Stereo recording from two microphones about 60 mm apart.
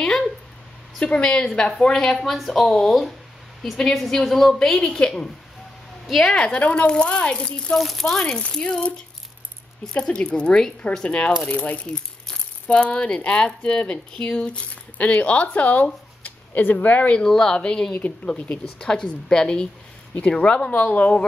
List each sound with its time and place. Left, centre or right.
0.9 s a woman's voice: centre
6.0 s a woman's voice: centre
7.8 s speech: centre
8.4 s a woman's voice: centre
9.9 s a woman's voice: centre
11.9 s speech: centre
17.2 s a woman's voice: centre
20.7 s speech: left